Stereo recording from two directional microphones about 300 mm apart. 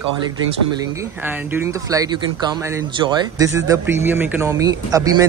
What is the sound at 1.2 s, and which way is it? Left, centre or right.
Speech, centre.